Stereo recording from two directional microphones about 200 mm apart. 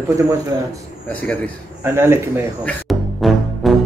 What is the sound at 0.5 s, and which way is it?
Speech, 20° right (ahead or behind).